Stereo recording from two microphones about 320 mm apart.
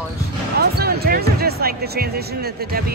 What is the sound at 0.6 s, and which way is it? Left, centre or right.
Speech, right.